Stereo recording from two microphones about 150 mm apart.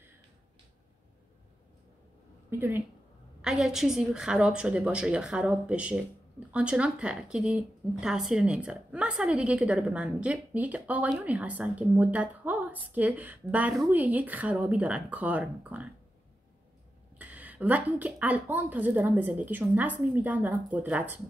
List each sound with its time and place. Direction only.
3.4 s a woman's voice: 5° right (ahead or behind)
17.2 s a woman's voice: 10° right (ahead or behind)